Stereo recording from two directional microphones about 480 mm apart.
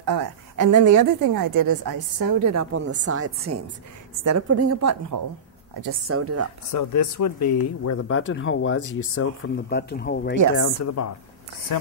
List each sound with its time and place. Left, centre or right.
0.0 s a sound: right
0.9 s a woman's voice: right
6.7 s speech: left